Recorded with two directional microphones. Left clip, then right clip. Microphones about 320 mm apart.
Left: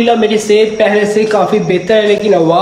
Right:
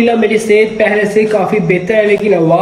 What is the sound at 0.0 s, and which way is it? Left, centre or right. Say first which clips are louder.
Speech: left 1 dB; left.